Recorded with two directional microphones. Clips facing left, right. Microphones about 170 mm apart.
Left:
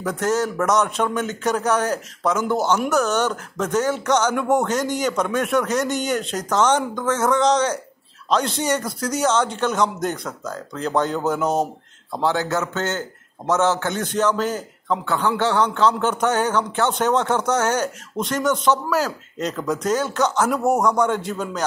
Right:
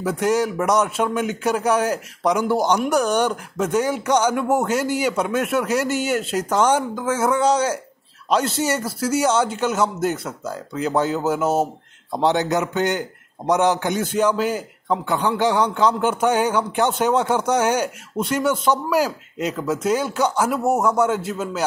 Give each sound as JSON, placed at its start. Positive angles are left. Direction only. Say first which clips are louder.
{"t": 0.0, "sound": "a man's voice", "louder": "right 2 dB", "side_deg": -10}
{"t": 12.1, "sound": "a man's voice", "louder": "right 3 dB", "side_deg": -20}